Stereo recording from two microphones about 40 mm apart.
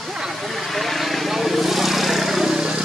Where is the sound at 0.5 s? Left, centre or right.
Centre.